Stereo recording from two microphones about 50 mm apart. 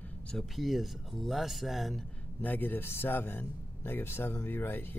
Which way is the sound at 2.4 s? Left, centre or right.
Left.